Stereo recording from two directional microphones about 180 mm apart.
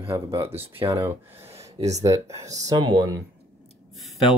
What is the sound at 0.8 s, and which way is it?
Speech, 15° right (ahead or behind).